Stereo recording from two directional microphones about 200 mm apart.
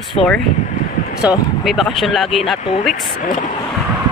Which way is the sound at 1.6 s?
Centre (ahead or behind).